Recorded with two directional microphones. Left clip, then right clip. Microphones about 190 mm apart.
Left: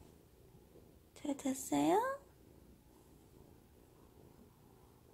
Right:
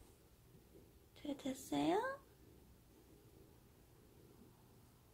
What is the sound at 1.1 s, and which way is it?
A woman's voice, 25° left (ahead or behind).